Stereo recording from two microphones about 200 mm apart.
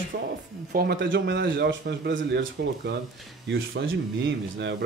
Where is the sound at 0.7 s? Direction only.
60° right (ahead or behind).